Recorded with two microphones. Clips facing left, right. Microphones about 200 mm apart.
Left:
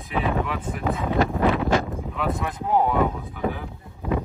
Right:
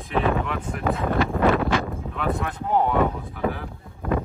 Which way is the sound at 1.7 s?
40° left (ahead or behind).